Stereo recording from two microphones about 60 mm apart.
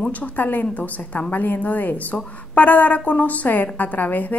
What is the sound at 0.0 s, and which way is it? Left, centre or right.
A woman's voice, left.